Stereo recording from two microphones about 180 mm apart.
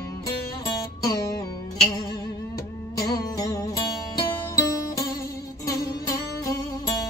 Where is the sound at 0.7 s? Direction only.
20° left (ahead or behind).